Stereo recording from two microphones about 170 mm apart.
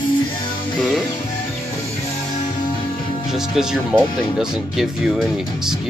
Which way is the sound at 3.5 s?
5° right (ahead or behind).